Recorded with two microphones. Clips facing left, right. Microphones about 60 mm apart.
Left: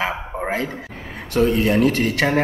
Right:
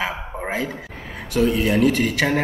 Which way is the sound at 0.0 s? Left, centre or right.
Centre.